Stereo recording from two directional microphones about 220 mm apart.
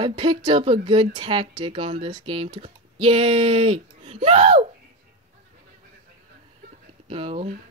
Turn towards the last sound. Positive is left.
turn(degrees=-25)  # may be behind; listen again after turning